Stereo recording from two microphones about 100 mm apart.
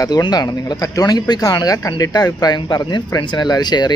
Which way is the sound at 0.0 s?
40° left (ahead or behind).